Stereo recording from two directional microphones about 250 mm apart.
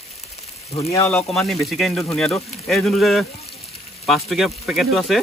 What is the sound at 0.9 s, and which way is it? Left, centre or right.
Speech, centre.